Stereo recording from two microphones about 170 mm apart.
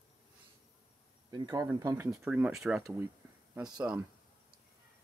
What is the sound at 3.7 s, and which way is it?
Speech, 15° right (ahead or behind).